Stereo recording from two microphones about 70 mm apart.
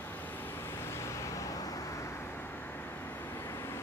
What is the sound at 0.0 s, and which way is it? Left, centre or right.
Vehicle, left.